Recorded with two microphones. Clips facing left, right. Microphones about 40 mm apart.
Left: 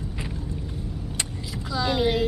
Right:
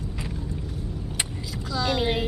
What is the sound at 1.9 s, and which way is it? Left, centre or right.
Speech, centre.